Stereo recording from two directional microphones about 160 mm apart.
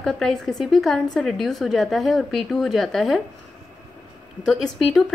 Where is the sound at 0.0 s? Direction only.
5° left (ahead or behind).